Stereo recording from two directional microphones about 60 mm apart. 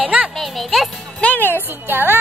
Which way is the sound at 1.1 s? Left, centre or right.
Left.